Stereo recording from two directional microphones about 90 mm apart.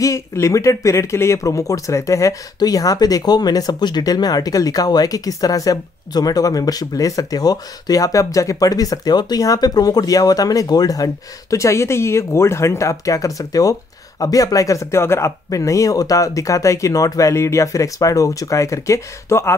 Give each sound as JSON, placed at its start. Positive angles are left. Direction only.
{"t": 0.0, "sound": "speech", "side_deg": 35}
{"t": 11.5, "sound": "speech", "side_deg": 35}